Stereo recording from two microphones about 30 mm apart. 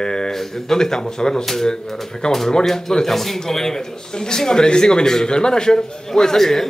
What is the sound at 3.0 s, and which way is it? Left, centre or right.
A man's voice, centre.